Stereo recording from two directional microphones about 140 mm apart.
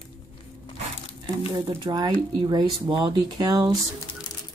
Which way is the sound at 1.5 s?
30° right (ahead or behind).